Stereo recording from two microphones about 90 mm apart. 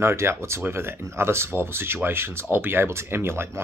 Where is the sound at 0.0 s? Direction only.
30° right (ahead or behind).